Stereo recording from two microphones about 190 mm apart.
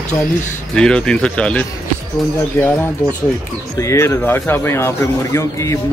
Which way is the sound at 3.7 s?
15° left (ahead or behind).